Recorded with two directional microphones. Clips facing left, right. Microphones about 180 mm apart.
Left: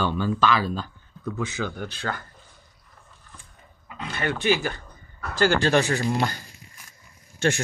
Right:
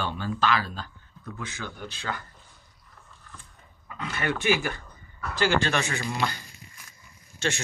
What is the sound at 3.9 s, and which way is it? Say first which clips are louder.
Speech: left 1 dB; 30° left (ahead or behind).